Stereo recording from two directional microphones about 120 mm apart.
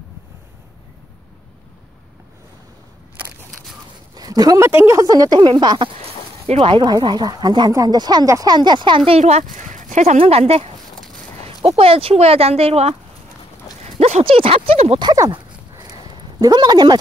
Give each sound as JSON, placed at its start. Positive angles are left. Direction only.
{"t": 4.1, "sound": "a sound", "side_deg": -35}
{"t": 4.6, "sound": "speech", "side_deg": -20}
{"t": 6.4, "sound": "speech", "side_deg": -55}
{"t": 6.8, "sound": "speech", "side_deg": -35}
{"t": 9.2, "sound": "speech", "side_deg": -85}
{"t": 10.1, "sound": "speech", "side_deg": -55}
{"t": 13.8, "sound": "clip-clop", "side_deg": -55}
{"t": 15.0, "sound": "speech", "side_deg": -30}
{"t": 15.7, "sound": "a sound", "side_deg": -35}